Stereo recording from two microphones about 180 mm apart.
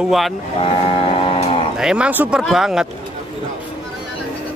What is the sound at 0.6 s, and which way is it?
Vehicle, 30° left (ahead or behind).